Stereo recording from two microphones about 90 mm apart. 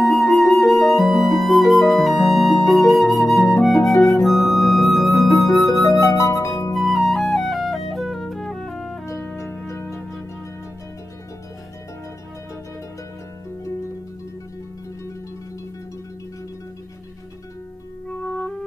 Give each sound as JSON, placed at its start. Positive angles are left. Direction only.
{"t": 0.0, "sound": "music", "side_deg": 0}
{"t": 2.2, "sound": "flute", "side_deg": 0}
{"t": 3.8, "sound": "music", "side_deg": 0}
{"t": 5.7, "sound": "music", "side_deg": 35}
{"t": 6.7, "sound": "music", "side_deg": 0}
{"t": 9.7, "sound": "music", "side_deg": 30}